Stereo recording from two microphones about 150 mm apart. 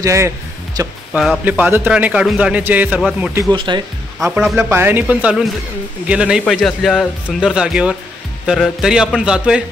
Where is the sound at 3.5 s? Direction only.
35° right (ahead or behind).